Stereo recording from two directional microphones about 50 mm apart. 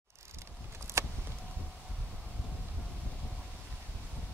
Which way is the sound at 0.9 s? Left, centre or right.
Right.